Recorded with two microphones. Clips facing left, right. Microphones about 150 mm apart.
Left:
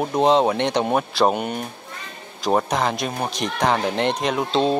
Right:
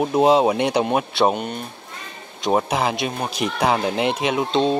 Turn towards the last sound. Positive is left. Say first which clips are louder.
# right 1 dB
turn(degrees=0)  # may be behind; listen again after turning